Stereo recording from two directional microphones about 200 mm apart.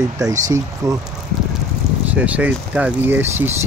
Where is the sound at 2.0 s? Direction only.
5° right (ahead or behind).